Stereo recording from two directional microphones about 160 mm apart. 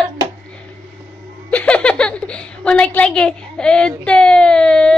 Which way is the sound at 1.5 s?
10° left (ahead or behind).